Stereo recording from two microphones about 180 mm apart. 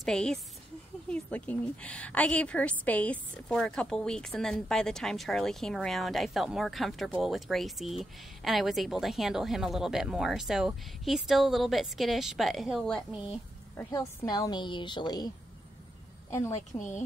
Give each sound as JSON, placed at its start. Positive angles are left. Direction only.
{"t": 0.0, "sound": "a woman's voice", "side_deg": 5}
{"t": 13.7, "sound": "a woman's voice", "side_deg": 20}
{"t": 16.3, "sound": "a woman's voice", "side_deg": 15}